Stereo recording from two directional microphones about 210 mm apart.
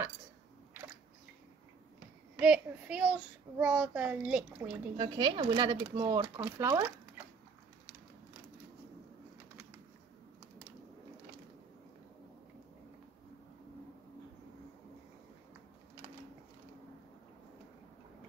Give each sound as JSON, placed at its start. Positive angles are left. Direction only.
{"t": 2.4, "sound": "a child's voice", "side_deg": -5}
{"t": 4.9, "sound": "speech", "side_deg": -20}